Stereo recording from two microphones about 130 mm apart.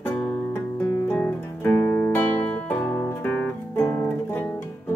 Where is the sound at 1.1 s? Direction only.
15° left (ahead or behind).